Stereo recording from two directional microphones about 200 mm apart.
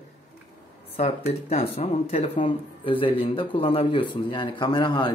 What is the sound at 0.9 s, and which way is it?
Speech, 30° left (ahead or behind).